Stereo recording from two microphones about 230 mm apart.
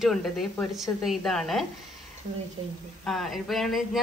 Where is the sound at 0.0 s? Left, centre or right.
Centre.